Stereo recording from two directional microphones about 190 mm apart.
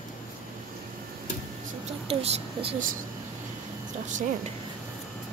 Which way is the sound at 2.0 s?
30° right (ahead or behind).